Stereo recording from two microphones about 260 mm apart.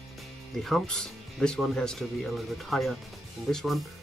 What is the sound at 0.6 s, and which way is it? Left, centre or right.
Speech, centre.